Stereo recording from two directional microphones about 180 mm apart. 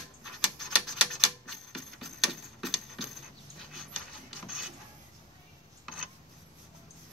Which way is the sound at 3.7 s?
Centre (ahead or behind).